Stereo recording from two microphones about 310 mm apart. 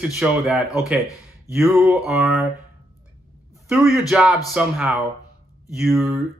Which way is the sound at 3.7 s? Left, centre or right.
Centre.